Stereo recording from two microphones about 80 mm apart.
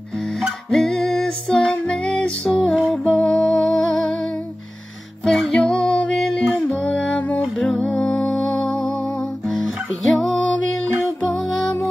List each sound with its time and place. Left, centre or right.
0.4 s music: centre
5.2 s music: centre
7.5 s music: centre
7.8 s music: centre
8.1 s music: centre
9.5 s music: centre